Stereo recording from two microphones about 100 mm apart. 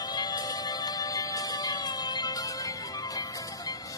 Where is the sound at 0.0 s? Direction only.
40° left (ahead or behind).